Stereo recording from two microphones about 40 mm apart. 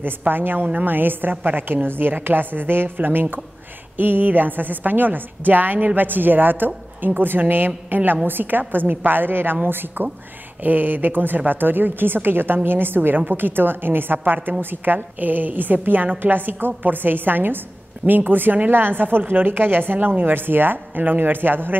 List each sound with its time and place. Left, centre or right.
0.3 s a woman's voice: right